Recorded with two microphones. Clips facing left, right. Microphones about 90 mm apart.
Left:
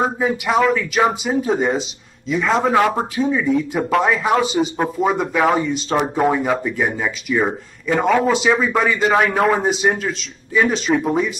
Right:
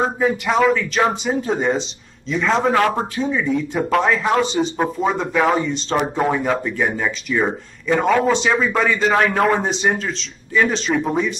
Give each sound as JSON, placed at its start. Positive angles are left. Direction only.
{"t": 0.0, "sound": "a man's voice", "side_deg": 5}